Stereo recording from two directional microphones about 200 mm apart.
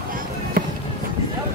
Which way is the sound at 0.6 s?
45° right (ahead or behind).